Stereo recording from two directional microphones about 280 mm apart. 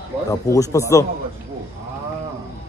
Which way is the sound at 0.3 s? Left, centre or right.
Centre.